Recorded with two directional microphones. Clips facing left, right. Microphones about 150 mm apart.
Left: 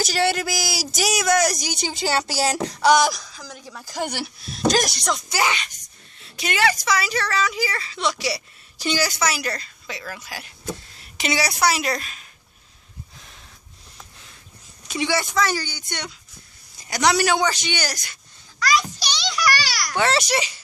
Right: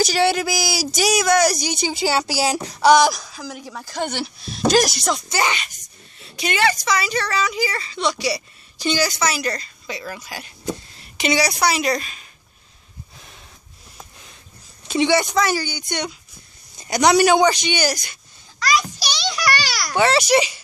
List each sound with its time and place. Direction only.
0.0 s speech: centre (ahead or behind)
3.8 s a woman's voice: 5° left (ahead or behind)
14.9 s a child's voice: 25° right (ahead or behind)
19.3 s a sound: 30° right (ahead or behind)
20.0 s speech: centre (ahead or behind)
20.2 s speech: 15° right (ahead or behind)